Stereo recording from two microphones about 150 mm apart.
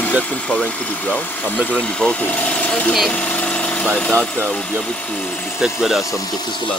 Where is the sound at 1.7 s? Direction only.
5° left (ahead or behind).